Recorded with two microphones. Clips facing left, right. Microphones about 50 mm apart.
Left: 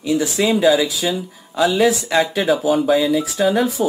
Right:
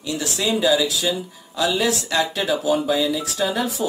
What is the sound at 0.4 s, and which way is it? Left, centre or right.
Speech, left.